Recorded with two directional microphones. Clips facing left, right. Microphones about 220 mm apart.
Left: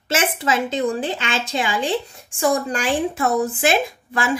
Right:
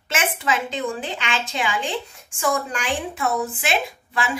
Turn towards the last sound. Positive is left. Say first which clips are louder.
# left 3 dB
turn(degrees=45)  # may be behind; listen again after turning